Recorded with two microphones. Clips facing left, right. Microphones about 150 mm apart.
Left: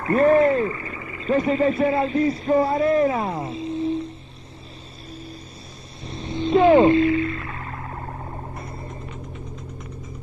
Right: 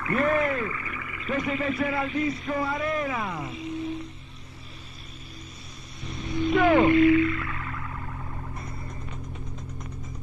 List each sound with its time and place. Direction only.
0.0 s speech: 35° left (ahead or behind)
6.0 s whale vocalization: 30° left (ahead or behind)